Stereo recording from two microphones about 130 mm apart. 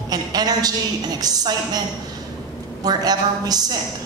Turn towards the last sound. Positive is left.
turn(degrees=-30)  # may be behind; listen again after turning